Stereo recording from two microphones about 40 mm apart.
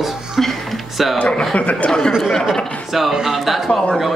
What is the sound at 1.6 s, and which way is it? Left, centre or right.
Speech, left.